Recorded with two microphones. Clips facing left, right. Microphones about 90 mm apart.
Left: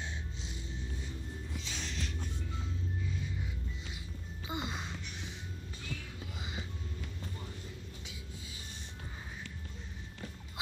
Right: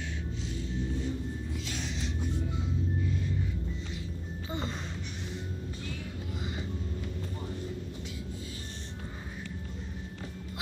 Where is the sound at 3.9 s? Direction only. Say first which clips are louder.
Right 8 dB; 10° left (ahead or behind).